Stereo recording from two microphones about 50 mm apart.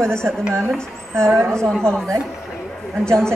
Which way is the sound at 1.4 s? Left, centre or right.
Right.